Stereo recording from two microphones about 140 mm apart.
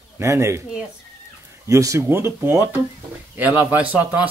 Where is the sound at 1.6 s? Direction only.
20° right (ahead or behind).